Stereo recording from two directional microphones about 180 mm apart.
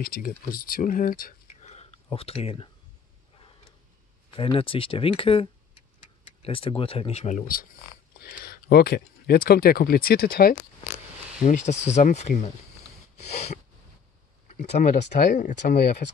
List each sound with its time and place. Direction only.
0.0 s speech: 55° left (ahead or behind); by 2.7 s 30° left (ahead or behind)
4.4 s speech: 30° left (ahead or behind); by 10.5 s 55° left (ahead or behind)
11.4 s speech: 40° left (ahead or behind)
14.8 s speech: 40° left (ahead or behind)